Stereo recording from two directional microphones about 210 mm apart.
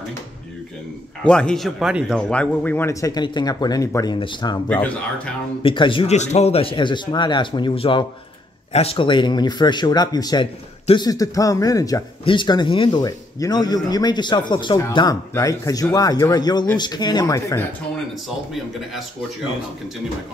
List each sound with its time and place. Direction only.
1.2 s a man's voice: 5° left (ahead or behind); by 4.6 s 20° left (ahead or behind)
5.6 s speech: 25° left (ahead or behind)